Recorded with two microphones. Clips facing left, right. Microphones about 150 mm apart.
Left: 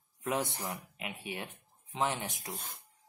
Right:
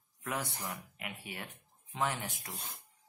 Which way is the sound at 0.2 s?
20° left (ahead or behind).